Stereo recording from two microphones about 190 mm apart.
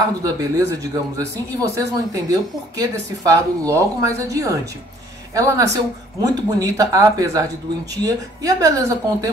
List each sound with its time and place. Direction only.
0.2 s speech: 20° right (ahead or behind)